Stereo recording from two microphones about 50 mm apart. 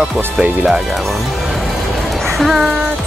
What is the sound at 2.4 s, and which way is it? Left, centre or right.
Speech, centre.